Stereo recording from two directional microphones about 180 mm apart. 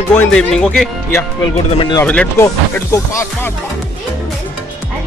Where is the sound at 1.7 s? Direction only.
25° left (ahead or behind).